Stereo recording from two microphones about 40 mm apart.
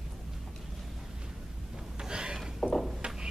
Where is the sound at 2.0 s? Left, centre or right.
Right.